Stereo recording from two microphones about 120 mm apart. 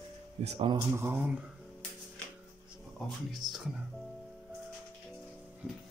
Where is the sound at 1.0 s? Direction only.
20° right (ahead or behind).